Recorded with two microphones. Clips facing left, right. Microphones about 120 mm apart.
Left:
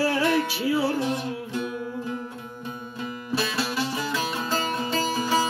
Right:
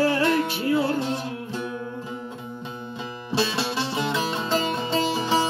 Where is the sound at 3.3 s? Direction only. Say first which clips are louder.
Right 2 dB; 25° right (ahead or behind).